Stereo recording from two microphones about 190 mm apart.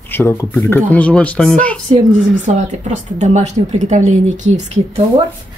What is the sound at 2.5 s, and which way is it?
A woman's voice, 40° right (ahead or behind).